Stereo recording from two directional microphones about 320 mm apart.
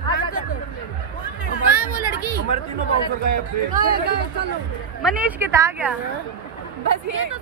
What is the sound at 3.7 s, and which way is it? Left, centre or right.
Speech, right.